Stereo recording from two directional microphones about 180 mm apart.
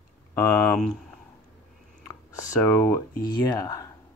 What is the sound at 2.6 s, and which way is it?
Speech, 15° left (ahead or behind).